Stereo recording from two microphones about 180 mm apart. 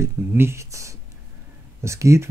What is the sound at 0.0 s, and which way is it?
Speech, 15° right (ahead or behind).